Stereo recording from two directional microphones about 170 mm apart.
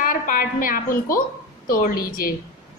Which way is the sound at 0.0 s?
55° left (ahead or behind).